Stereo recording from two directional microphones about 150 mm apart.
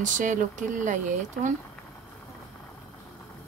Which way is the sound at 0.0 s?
60° right (ahead or behind).